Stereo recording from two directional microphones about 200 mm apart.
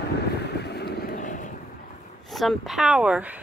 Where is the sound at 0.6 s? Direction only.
55° left (ahead or behind).